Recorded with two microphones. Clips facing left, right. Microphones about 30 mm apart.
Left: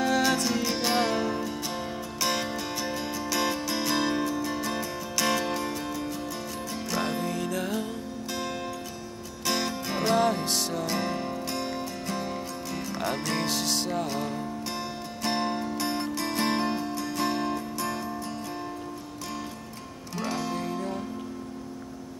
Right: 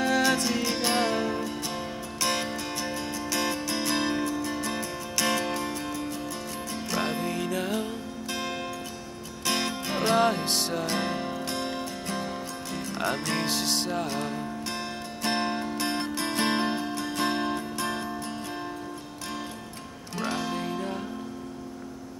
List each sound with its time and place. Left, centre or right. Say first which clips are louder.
0.0 s music: even; centre
20.2 s music: right 1 dB; centre